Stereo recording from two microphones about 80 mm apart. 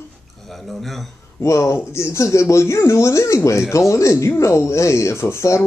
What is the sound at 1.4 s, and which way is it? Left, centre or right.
Speech, left.